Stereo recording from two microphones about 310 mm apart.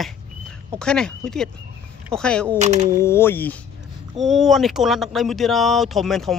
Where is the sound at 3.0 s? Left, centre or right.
Centre.